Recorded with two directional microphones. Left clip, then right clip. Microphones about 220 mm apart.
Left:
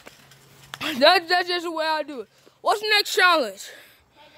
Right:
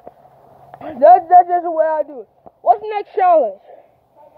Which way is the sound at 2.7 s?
40° left (ahead or behind).